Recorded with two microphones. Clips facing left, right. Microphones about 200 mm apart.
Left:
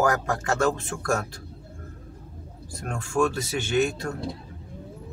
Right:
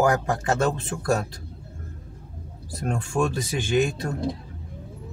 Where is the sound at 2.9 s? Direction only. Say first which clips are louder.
Even; 20° right (ahead or behind).